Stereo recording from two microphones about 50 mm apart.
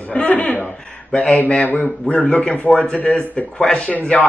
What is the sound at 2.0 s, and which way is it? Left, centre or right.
A man's voice, left.